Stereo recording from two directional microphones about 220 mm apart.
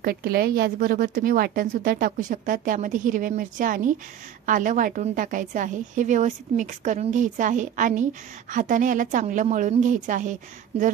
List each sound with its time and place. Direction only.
0.0 s a woman's voice: 45° right (ahead or behind)